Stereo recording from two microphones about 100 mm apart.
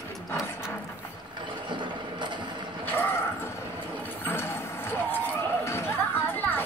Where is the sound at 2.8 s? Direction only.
20° left (ahead or behind).